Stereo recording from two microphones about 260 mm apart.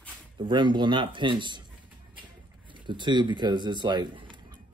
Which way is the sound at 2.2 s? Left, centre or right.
Centre.